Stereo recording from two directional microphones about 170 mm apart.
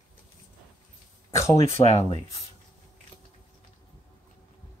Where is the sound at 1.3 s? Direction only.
15° left (ahead or behind).